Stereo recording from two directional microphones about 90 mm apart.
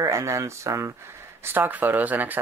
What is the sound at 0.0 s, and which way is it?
Speech, 35° right (ahead or behind).